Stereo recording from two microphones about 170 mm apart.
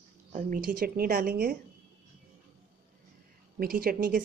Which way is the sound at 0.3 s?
50° right (ahead or behind).